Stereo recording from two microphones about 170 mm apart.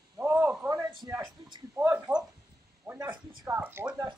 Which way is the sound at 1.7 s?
10° right (ahead or behind).